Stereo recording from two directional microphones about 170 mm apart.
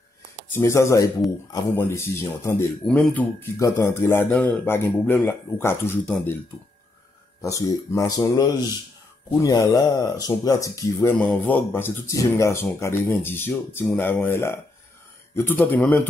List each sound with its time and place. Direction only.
0.5 s speech: 15° left (ahead or behind)
7.4 s speech: 20° left (ahead or behind)